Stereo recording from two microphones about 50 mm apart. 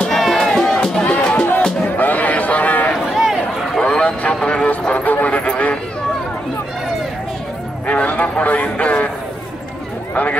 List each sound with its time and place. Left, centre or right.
0.1 s music: centre
1.0 s music: left
1.9 s a sound: left
3.2 s run: centre
3.8 s vehicle: left
7.8 s a sound: left